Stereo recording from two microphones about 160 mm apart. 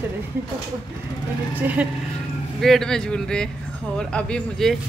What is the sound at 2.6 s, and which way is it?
Speech, 5° left (ahead or behind).